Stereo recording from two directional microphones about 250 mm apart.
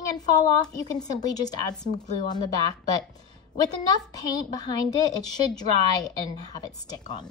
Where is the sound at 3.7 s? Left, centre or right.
Centre.